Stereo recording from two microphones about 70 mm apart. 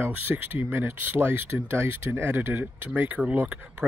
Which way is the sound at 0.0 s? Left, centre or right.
Right.